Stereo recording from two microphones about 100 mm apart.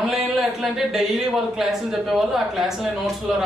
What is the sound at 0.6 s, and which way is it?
Speech, 5° right (ahead or behind).